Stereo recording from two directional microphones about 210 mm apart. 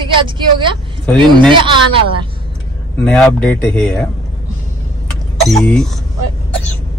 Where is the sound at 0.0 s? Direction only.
25° right (ahead or behind).